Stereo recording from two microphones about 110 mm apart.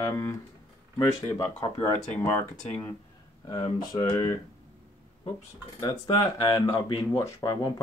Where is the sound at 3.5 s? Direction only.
45° left (ahead or behind).